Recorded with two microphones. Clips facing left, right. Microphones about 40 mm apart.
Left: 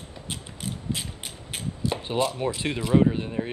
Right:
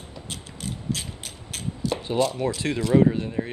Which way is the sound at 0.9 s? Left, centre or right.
Centre.